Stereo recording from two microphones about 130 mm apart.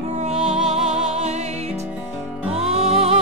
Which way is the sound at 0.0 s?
60° right (ahead or behind).